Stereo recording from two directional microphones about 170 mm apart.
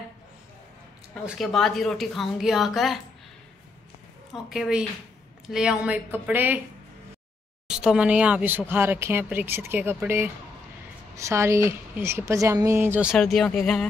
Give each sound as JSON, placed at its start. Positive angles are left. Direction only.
{"t": 1.2, "sound": "speech", "side_deg": 0}
{"t": 4.3, "sound": "speech", "side_deg": 0}
{"t": 7.6, "sound": "speech", "side_deg": -5}